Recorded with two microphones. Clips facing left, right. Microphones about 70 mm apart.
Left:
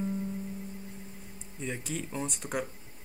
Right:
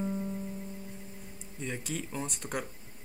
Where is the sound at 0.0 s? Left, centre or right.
Centre.